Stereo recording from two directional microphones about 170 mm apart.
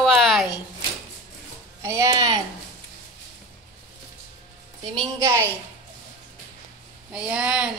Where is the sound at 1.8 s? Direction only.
20° right (ahead or behind).